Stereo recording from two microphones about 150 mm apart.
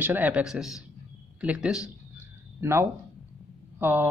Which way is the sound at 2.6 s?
20° right (ahead or behind).